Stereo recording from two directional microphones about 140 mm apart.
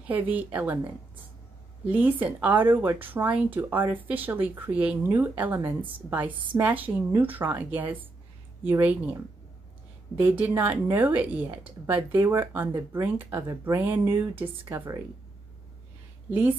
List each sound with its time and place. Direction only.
0.0 s speech: 10° right (ahead or behind)
1.9 s speech: 10° right (ahead or behind)
10.2 s speech: 10° right (ahead or behind)
16.3 s a woman's voice: 10° right (ahead or behind)